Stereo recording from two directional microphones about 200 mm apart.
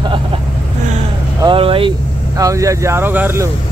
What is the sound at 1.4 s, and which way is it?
Speech, 25° right (ahead or behind).